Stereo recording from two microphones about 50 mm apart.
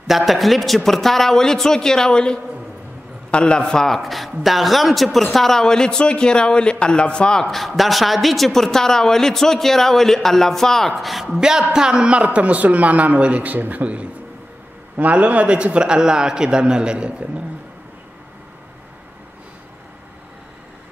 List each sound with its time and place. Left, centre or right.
0.0 s a woman's voice: centre
7.4 s a woman's voice: centre
11.3 s a man's voice: centre